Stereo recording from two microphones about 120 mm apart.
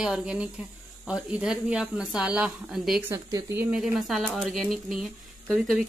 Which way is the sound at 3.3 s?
30° right (ahead or behind).